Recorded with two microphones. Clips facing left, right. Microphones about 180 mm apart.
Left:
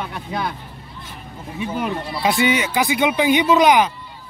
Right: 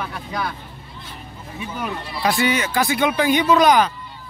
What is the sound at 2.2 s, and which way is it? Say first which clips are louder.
Speech: left 1 dB; 20° left (ahead or behind).